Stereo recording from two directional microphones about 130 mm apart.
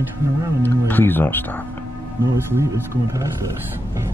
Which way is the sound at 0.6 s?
15° left (ahead or behind).